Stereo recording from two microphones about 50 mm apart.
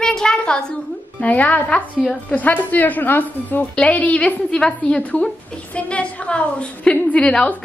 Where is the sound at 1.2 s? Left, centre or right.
Left.